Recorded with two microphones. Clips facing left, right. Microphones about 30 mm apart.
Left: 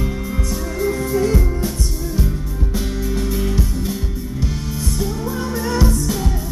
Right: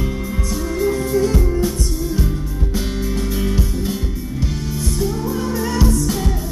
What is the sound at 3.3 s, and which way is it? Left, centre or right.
Music, centre.